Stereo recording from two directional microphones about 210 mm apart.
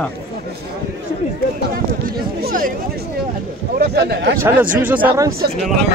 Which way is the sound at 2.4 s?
40° right (ahead or behind).